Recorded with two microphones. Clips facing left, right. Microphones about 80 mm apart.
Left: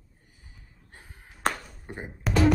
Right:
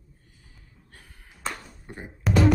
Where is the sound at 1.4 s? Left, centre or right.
Left.